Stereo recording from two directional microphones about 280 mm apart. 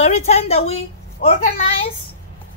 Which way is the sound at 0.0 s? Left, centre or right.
Left.